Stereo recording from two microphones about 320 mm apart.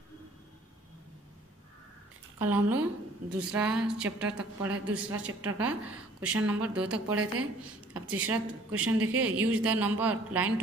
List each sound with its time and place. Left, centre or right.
2.3 s a woman's voice: centre
7.1 s speech: right
9.4 s a woman's voice: centre